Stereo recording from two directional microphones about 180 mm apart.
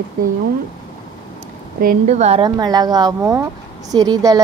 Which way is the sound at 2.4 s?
20° right (ahead or behind).